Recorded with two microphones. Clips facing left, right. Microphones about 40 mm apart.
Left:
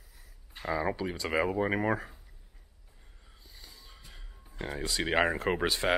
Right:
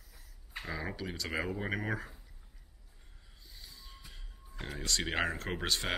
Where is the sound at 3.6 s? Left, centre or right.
Centre.